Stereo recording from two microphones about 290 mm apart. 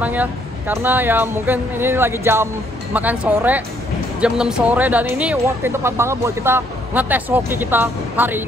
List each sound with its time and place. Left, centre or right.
0.0 s speech: centre